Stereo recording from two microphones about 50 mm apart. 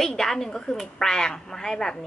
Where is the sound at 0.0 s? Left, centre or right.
Centre.